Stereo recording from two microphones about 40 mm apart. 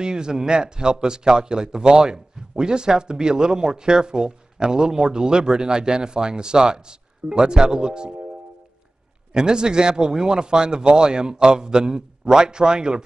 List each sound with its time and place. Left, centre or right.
0.0 s a man's voice: centre
9.3 s a man's voice: centre